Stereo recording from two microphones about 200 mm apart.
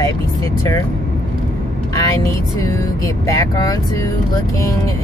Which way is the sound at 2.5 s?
15° left (ahead or behind).